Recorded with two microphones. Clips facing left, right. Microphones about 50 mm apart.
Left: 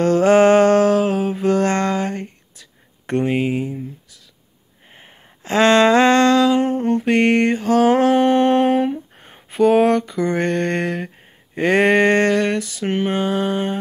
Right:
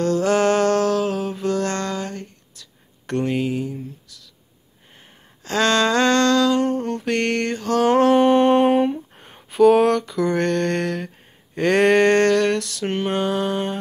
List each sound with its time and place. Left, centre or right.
0.0 s music: left
4.9 s humming: left
11.5 s a sound: centre